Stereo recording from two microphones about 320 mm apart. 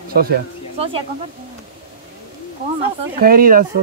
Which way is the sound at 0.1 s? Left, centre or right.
Right.